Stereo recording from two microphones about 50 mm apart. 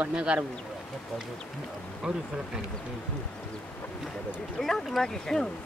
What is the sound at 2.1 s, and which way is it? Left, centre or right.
Speech, right.